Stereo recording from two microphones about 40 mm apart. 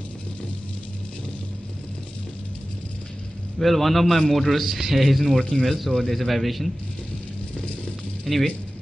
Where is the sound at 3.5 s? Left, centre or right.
Centre.